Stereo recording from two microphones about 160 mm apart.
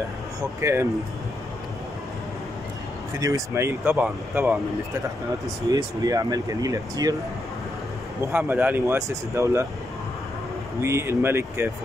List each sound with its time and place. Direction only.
0.6 s speech: 15° right (ahead or behind)
3.2 s speech: 20° right (ahead or behind)
5.7 s speech: 25° right (ahead or behind)
8.3 s speech: 10° right (ahead or behind)
10.8 s speech: 15° right (ahead or behind)